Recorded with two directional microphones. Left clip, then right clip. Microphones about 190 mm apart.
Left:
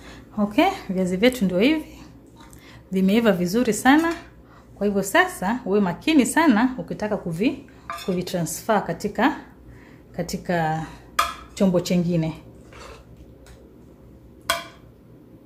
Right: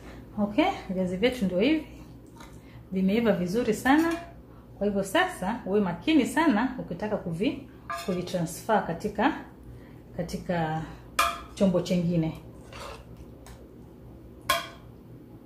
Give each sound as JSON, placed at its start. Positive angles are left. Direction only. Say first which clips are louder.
{"t": 0.6, "sound": "a woman's voice", "louder": "left 6 dB", "side_deg": 60}
{"t": 2.9, "sound": "a woman's voice", "louder": "left 6 dB", "side_deg": 55}